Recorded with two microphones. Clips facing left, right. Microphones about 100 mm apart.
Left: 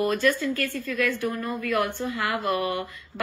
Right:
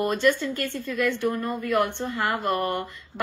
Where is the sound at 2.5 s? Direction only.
45° right (ahead or behind).